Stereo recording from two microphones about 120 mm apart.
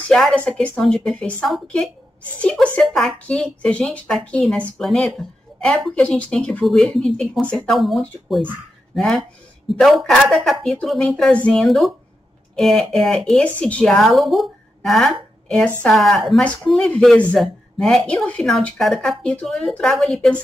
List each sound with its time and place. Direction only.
0.1 s a woman's voice: 5° left (ahead or behind)